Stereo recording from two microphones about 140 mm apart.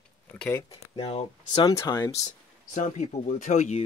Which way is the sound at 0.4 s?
15° left (ahead or behind).